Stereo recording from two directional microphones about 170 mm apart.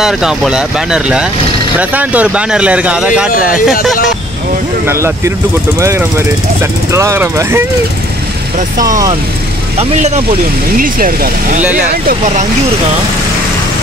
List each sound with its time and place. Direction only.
0.0 s speech: 5° right (ahead or behind)
3.3 s speech: 55° left (ahead or behind)
4.8 s speech: 15° right (ahead or behind)
8.5 s speech: 50° right (ahead or behind)
10.8 s speech: 55° right (ahead or behind)